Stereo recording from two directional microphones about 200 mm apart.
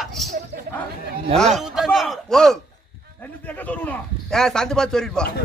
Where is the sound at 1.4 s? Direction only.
Centre (ahead or behind).